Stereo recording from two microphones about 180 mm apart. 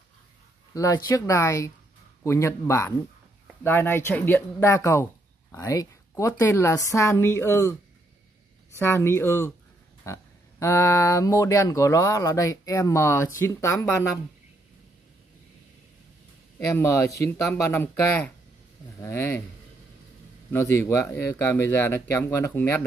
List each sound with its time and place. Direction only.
0.7 s speech: 20° left (ahead or behind)
8.7 s speech: 15° left (ahead or behind)
16.5 s speech: 10° left (ahead or behind)
20.5 s speech: 15° left (ahead or behind)